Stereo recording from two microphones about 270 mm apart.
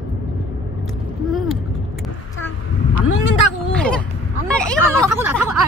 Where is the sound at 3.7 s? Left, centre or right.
Centre.